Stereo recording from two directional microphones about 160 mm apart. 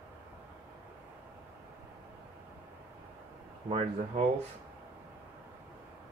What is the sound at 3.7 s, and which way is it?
Speech, 40° right (ahead or behind).